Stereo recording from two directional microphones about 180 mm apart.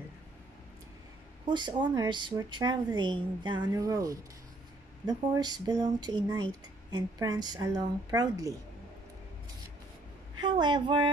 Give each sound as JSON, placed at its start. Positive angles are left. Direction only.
{"t": 1.4, "sound": "speech", "side_deg": -25}
{"t": 10.4, "sound": "speech", "side_deg": -25}